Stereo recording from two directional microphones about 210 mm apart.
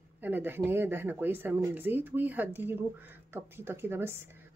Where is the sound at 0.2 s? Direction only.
10° right (ahead or behind).